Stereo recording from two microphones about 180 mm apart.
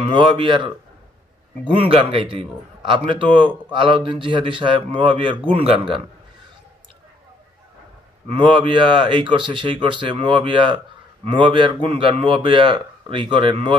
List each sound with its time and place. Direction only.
0.1 s speech: 25° right (ahead or behind)
1.8 s speech: 30° right (ahead or behind)
8.3 s speech: 30° right (ahead or behind)